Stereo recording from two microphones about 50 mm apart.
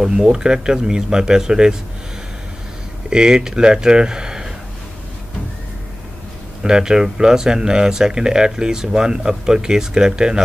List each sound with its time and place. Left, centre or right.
0.0 s speech: centre
3.1 s speech: centre
6.6 s speech: centre